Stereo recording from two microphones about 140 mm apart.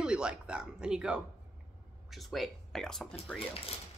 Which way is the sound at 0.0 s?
5° right (ahead or behind).